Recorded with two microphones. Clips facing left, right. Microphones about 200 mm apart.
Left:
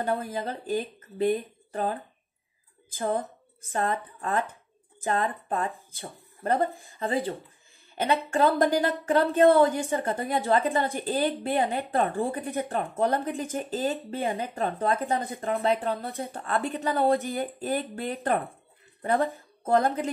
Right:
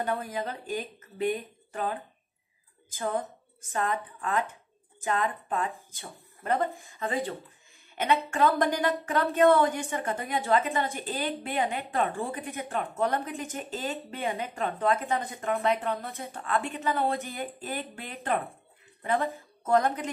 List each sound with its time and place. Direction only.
0.0 s speech: 35° left (ahead or behind)
3.0 s speech: 30° left (ahead or behind)